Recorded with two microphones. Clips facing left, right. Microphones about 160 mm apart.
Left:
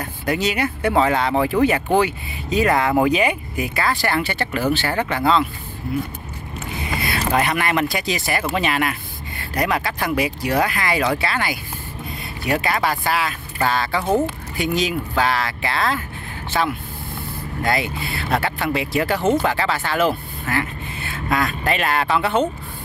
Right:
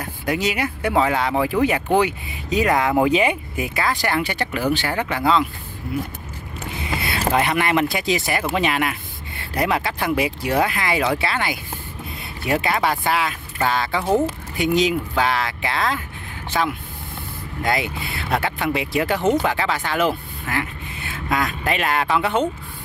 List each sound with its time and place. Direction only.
0.0 s speech: 10° right (ahead or behind)
3.1 s speech: 25° right (ahead or behind); by 5.4 s 10° right (ahead or behind)
7.0 s speech: 25° right (ahead or behind)
12.7 s speech: centre (ahead or behind)
13.0 s speech: 20° right (ahead or behind)
17.6 s speech: 20° right (ahead or behind)